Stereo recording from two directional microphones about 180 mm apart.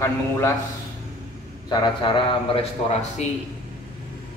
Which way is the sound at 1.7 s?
25° left (ahead or behind).